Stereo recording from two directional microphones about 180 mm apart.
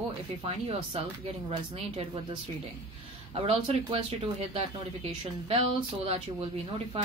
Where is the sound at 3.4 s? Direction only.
30° right (ahead or behind).